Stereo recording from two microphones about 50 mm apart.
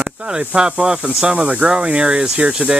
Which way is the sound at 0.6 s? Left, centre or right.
Centre.